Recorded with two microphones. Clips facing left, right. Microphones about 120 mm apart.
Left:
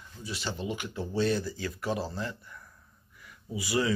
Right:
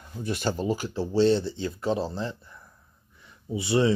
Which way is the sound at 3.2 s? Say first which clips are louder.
Right 5 dB; 25° right (ahead or behind).